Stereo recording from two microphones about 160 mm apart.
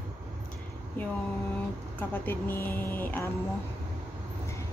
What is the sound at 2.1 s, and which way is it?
Speech, 15° left (ahead or behind).